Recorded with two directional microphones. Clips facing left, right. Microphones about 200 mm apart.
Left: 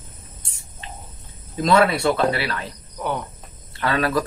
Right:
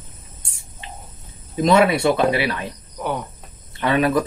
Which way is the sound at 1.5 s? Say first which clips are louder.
Right 2 dB; 15° right (ahead or behind).